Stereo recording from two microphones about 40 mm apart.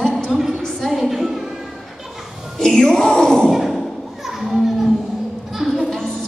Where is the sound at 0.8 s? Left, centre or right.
Centre.